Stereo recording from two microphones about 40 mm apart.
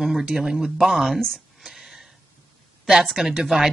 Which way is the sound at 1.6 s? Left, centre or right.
Centre.